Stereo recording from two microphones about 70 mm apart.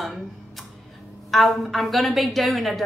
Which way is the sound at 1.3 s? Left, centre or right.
Centre.